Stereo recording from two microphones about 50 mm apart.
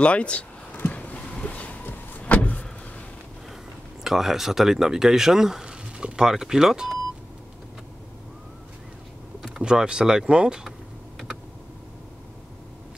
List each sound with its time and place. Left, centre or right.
0.0 s speech: left
0.7 s vehicle: left
4.0 s speech: centre
9.6 s speech: centre